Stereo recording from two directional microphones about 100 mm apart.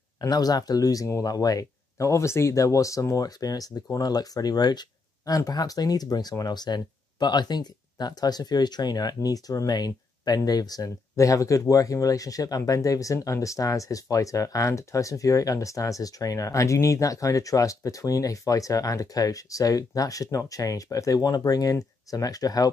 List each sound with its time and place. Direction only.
0.2 s speech: 40° left (ahead or behind)